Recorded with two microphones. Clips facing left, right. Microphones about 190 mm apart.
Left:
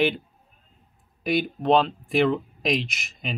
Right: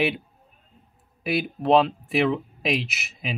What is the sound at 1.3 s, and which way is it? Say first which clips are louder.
Speech: even; 5° right (ahead or behind).